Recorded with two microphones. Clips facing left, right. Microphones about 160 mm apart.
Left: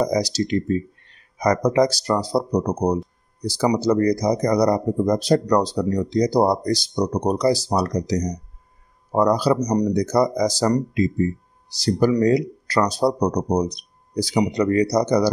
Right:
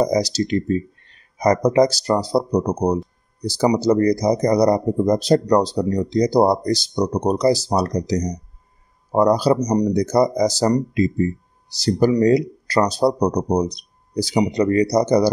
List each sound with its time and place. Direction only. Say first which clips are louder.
0.0 s speech: right 2 dB; 30° right (ahead or behind)